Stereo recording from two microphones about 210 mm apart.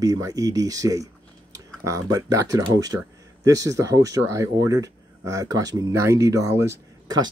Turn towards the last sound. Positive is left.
turn(degrees=-15)  # may be behind; listen again after turning